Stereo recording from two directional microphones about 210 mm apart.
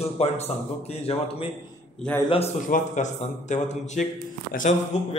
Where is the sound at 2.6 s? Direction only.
35° left (ahead or behind).